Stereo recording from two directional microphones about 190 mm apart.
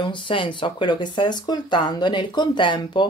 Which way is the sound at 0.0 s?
25° left (ahead or behind).